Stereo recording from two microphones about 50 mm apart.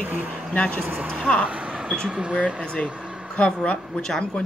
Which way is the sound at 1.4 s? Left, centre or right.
Right.